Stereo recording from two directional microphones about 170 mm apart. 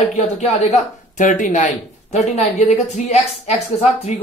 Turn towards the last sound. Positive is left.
turn(degrees=45)  # may be behind; listen again after turning